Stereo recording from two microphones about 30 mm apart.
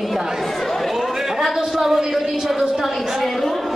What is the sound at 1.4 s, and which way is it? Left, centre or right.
Speech, centre.